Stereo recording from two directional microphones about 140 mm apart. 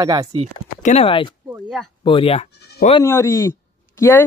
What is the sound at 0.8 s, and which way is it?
Speech, 60° left (ahead or behind).